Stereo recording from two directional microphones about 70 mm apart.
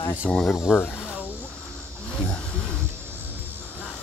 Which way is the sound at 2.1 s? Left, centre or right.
Centre.